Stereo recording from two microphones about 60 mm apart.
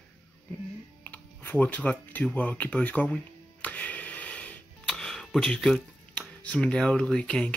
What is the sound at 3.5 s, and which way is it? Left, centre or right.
Music, left.